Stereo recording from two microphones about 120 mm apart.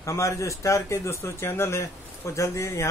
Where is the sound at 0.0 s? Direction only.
25° left (ahead or behind).